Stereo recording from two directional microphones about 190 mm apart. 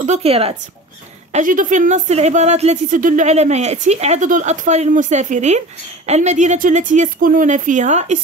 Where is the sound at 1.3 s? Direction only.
45° right (ahead or behind).